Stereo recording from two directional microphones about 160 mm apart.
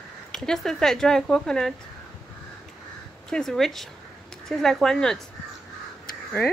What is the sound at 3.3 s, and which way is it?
Speech, 5° left (ahead or behind).